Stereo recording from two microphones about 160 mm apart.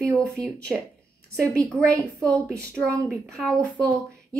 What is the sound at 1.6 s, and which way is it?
Speech, 20° right (ahead or behind).